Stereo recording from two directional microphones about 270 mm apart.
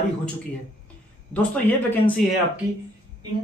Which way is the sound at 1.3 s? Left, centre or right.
Centre.